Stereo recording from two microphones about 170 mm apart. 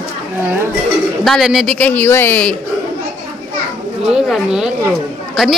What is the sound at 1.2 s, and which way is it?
A man's voice, centre (ahead or behind).